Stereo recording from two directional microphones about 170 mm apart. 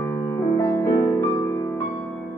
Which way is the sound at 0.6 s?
20° left (ahead or behind).